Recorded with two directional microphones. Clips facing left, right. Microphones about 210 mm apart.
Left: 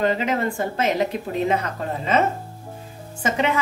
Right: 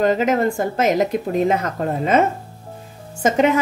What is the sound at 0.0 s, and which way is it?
A woman's voice, 45° right (ahead or behind).